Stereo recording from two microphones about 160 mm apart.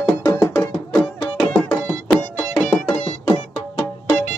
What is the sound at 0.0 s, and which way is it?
Music, 25° left (ahead or behind).